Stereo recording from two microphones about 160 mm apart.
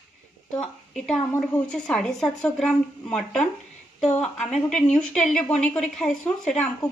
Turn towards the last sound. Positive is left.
turn(degrees=5)  # may be behind; listen again after turning